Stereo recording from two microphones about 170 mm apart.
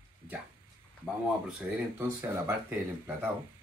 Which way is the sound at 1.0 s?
5° right (ahead or behind).